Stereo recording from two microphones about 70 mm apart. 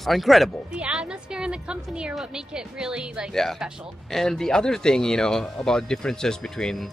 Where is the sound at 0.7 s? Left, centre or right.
Centre.